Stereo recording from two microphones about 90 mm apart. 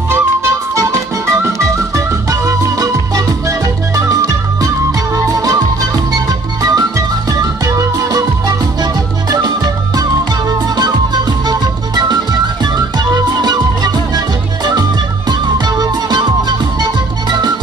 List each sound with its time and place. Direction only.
0.1 s music: 35° right (ahead or behind)
11.4 s music: 50° right (ahead or behind)